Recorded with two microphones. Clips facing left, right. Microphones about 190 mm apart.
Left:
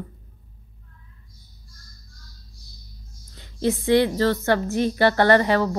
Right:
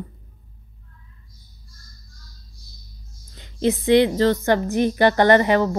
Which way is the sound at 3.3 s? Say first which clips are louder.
Right 2 dB; 20° right (ahead or behind).